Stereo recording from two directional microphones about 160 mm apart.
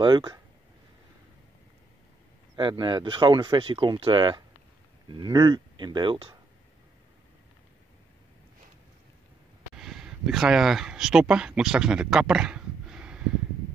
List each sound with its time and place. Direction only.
0.0 s speech: 25° right (ahead or behind)
2.7 s speech: 30° right (ahead or behind)
9.8 s speech: centre (ahead or behind)